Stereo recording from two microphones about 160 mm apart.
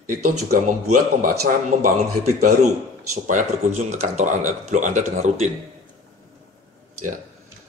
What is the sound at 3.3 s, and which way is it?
Speech, 50° right (ahead or behind).